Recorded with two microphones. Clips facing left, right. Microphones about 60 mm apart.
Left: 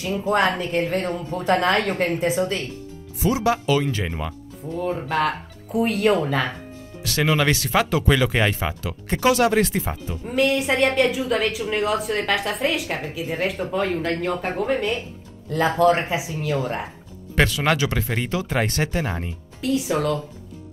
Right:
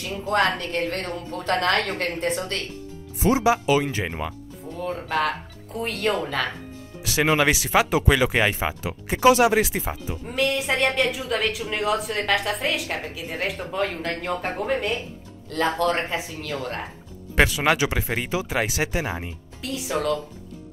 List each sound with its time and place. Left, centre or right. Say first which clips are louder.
0.3 s speech: left 1 dB; centre
3.2 s speech: right 1 dB; right
3.4 s speech: even; centre
4.7 s speech: left 2 dB; centre
7.0 s speech: right 1 dB; centre
17.4 s speech: even; centre